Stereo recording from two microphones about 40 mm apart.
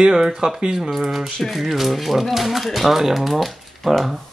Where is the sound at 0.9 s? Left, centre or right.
Centre.